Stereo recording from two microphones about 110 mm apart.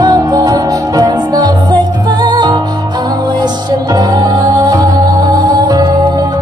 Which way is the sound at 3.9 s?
40° right (ahead or behind).